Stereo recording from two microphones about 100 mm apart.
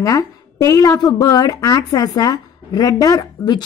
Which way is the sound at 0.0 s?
35° left (ahead or behind).